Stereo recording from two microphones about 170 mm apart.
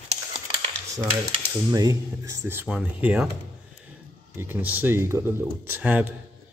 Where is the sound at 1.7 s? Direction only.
20° right (ahead or behind).